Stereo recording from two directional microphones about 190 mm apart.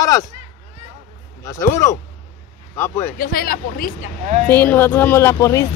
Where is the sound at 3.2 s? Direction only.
50° left (ahead or behind).